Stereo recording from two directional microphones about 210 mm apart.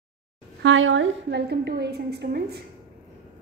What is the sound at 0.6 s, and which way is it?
A woman's voice, 65° right (ahead or behind).